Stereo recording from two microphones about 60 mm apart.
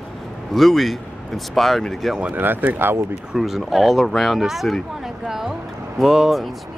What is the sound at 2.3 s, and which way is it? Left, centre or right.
Speech, right.